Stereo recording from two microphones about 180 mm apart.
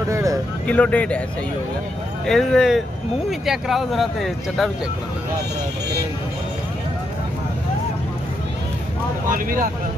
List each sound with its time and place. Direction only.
0.1 s a sound: 15° right (ahead or behind)
0.7 s speech: 10° left (ahead or behind)
2.2 s speech: centre (ahead or behind)
9.3 s speech: 50° right (ahead or behind)